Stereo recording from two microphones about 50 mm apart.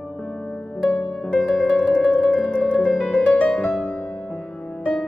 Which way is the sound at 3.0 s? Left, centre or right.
Centre.